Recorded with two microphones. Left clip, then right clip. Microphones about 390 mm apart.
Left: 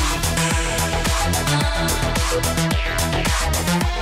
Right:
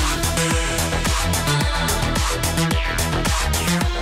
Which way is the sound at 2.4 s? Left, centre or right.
Centre.